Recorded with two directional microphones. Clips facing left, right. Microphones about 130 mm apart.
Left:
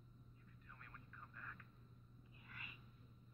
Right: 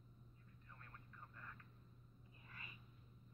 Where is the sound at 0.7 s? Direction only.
30° right (ahead or behind).